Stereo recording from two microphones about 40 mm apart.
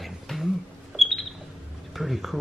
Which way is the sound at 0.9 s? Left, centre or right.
Centre.